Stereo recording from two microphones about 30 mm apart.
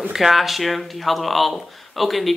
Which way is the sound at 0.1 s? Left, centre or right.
Centre.